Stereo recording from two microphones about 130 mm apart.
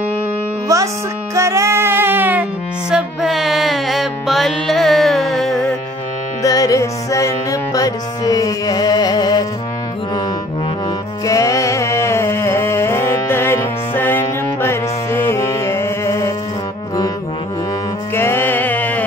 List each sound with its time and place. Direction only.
1.3 s music: 20° right (ahead or behind)
2.9 s music: 5° right (ahead or behind)
6.4 s music: 25° left (ahead or behind)
11.2 s music: 25° left (ahead or behind)
18.1 s a sound: 20° left (ahead or behind)